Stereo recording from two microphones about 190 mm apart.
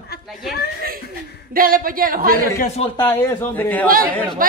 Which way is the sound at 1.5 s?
50° right (ahead or behind).